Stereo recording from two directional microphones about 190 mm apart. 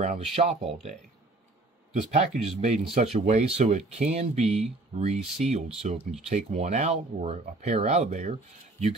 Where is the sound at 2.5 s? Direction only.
35° right (ahead or behind).